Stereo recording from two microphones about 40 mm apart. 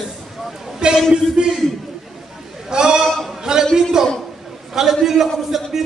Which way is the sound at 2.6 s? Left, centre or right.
Centre.